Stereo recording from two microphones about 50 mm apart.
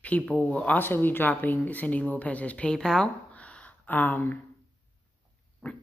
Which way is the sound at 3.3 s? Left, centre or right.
Left.